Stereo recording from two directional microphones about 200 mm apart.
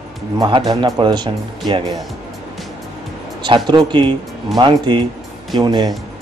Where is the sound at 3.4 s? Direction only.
20° right (ahead or behind).